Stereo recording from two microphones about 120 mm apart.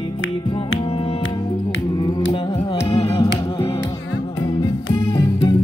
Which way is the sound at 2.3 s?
50° left (ahead or behind).